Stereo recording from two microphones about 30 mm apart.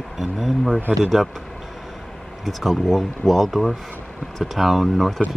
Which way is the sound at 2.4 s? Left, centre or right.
Centre.